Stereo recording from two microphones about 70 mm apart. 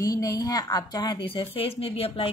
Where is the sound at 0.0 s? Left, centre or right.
Left.